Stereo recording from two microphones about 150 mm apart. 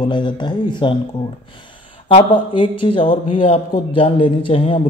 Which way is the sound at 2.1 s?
35° left (ahead or behind).